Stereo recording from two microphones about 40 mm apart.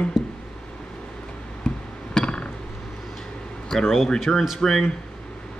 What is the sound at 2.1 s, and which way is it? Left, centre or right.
Hammer, left.